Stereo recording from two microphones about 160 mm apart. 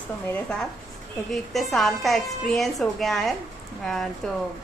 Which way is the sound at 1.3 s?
Centre (ahead or behind).